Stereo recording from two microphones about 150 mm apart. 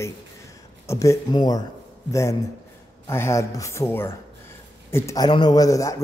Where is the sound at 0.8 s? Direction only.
20° left (ahead or behind).